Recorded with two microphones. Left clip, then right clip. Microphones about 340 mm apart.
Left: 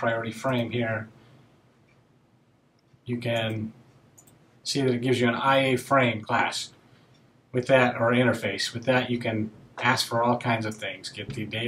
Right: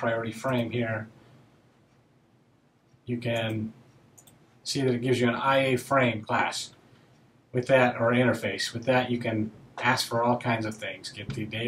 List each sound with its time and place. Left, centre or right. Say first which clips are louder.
0.0 s speech: left 2 dB; centre
3.1 s speech: left 2 dB; centre